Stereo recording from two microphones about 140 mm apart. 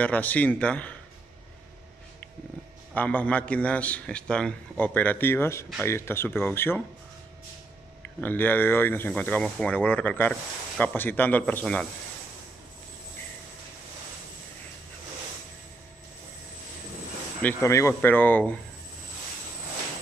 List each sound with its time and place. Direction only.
0.0 s a man's voice: 10° left (ahead or behind)
2.9 s a man's voice: 10° left (ahead or behind)
8.2 s a man's voice: 15° left (ahead or behind)
17.4 s a man's voice: 15° left (ahead or behind)